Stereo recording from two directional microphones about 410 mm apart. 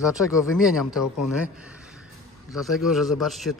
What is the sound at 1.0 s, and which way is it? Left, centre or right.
Speech, left.